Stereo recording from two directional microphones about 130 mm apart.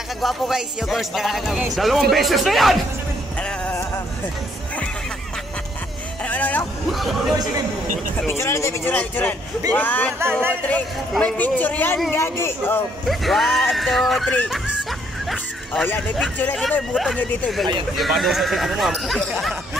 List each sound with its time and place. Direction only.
0.2 s speech: centre (ahead or behind)
6.2 s music: 10° left (ahead or behind)
6.9 s speech: centre (ahead or behind)
8.3 s speech: 20° left (ahead or behind)
13.0 s speech: centre (ahead or behind)
16.9 s speech: centre (ahead or behind)